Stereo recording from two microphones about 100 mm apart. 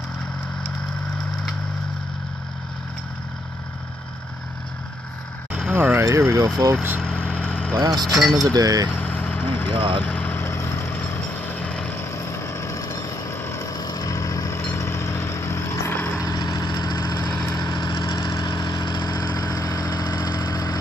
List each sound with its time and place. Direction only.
5.7 s vehicle: 20° right (ahead or behind)
6.0 s speech: 30° right (ahead or behind)
7.0 s vehicle: 10° left (ahead or behind)
8.0 s speech: centre (ahead or behind)
8.5 s speech: 35° right (ahead or behind)
8.9 s vehicle: 15° left (ahead or behind)
9.8 s speech: 60° right (ahead or behind)
10.0 s vehicle: 15° left (ahead or behind)
12.0 s vehicle: 25° left (ahead or behind)
13.7 s vehicle: 40° left (ahead or behind)
16.2 s vehicle: 40° left (ahead or behind)